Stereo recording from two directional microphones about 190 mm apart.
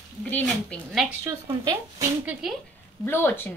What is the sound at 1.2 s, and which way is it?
Speech, 15° right (ahead or behind).